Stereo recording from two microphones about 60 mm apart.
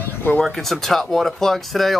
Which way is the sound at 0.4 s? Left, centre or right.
Centre.